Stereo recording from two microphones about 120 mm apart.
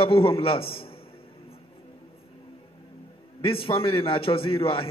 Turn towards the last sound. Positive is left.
turn(degrees=50)  # may be behind; listen again after turning